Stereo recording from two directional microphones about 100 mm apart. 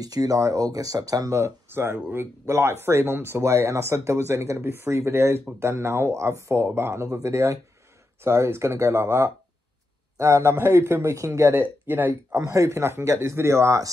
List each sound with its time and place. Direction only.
0.0 s speech: 40° right (ahead or behind); by 12.4 s 20° right (ahead or behind)
12.4 s speech: 30° right (ahead or behind)